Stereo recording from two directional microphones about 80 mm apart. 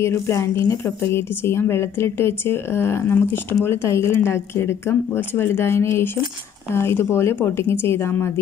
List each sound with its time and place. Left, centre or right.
0.0 s a woman's voice: left